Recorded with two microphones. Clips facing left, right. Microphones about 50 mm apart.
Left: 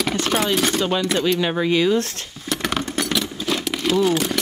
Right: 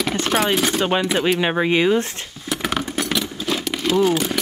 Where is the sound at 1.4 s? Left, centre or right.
Right.